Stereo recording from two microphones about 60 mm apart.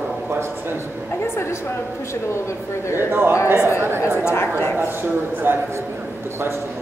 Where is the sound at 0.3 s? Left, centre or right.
Right.